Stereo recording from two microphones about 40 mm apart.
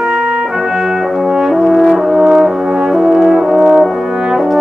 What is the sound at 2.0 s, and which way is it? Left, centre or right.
Brass instrument, centre.